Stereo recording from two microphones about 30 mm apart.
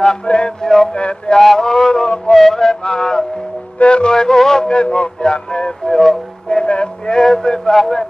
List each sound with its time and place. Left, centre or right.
0.3 s speech: left
0.6 s mantra: left
0.9 s speech: left
1.4 s speech: centre
1.7 s music: left
3.8 s speech: left
4.1 s music: left
4.6 s speech: left
7.2 s music: left
7.7 s speech: centre